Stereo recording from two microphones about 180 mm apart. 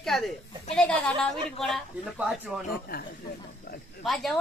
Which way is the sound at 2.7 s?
55° left (ahead or behind).